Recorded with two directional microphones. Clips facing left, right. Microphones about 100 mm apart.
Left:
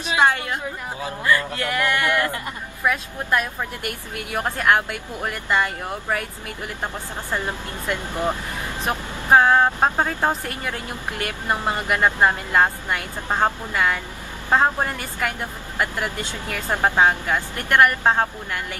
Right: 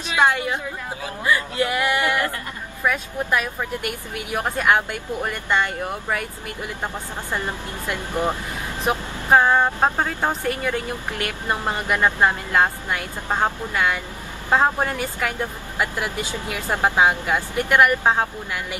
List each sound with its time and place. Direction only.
1.2 s speech: 15° right (ahead or behind)
2.8 s speech: centre (ahead or behind)
4.7 s speech: 5° left (ahead or behind)
8.1 s speech: 15° right (ahead or behind)
9.3 s speech: 5° left (ahead or behind)